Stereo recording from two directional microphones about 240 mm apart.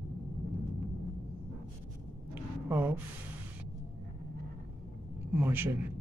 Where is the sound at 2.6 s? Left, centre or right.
Centre.